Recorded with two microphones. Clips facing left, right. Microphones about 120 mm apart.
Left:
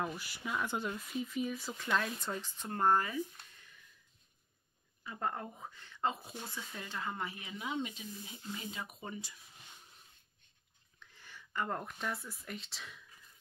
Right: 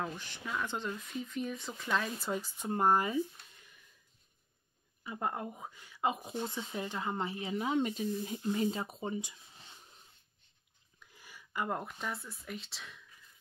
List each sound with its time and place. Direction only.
0.0 s speech: 10° left (ahead or behind); by 3.3 s 15° right (ahead or behind)
5.0 s speech: 15° right (ahead or behind); by 7.7 s 35° right (ahead or behind)
7.7 s speech: 45° right (ahead or behind); by 9.4 s 25° right (ahead or behind)
11.0 s speech: 10° right (ahead or behind)